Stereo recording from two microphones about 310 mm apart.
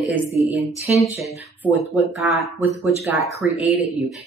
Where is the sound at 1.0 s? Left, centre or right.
Centre.